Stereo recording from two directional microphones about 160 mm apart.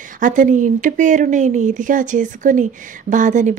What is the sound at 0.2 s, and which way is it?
A woman's voice, 55° right (ahead or behind).